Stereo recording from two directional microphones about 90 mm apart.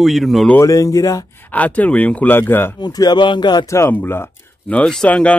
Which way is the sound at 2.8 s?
50° left (ahead or behind).